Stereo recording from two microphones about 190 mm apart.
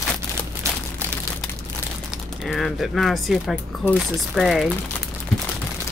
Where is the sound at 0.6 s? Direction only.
15° right (ahead or behind).